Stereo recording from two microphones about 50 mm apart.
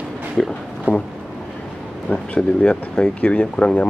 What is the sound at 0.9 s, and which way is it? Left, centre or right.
Speech, right.